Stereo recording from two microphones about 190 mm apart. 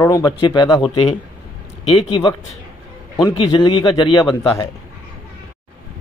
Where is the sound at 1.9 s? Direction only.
30° left (ahead or behind).